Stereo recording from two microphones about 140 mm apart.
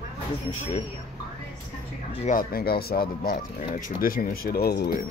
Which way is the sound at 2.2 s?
80° left.